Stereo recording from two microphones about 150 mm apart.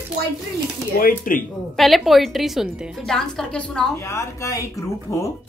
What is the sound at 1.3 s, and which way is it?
Speech, 65° left (ahead or behind).